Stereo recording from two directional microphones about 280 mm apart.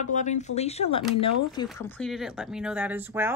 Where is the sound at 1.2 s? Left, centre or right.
Left.